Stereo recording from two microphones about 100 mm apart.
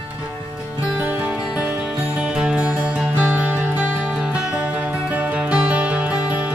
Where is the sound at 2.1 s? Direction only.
5° right (ahead or behind).